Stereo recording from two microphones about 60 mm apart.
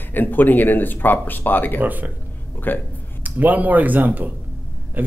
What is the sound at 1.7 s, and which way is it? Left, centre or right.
Speech, right.